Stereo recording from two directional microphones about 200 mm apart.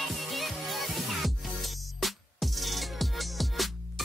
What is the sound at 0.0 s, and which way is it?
Music, centre (ahead or behind).